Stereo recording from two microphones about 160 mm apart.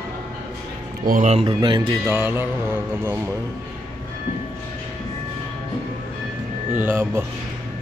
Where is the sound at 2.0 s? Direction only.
15° right (ahead or behind).